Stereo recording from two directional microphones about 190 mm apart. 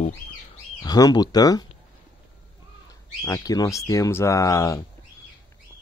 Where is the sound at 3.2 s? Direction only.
20° left (ahead or behind).